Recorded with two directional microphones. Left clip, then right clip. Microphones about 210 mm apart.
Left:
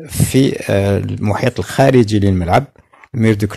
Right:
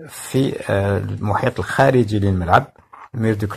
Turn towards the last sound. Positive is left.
turn(degrees=45)  # may be behind; listen again after turning